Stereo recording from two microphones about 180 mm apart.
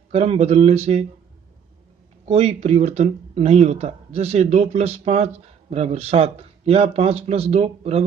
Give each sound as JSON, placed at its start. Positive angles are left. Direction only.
{"t": 0.1, "sound": "speech", "side_deg": -35}
{"t": 2.2, "sound": "speech", "side_deg": -35}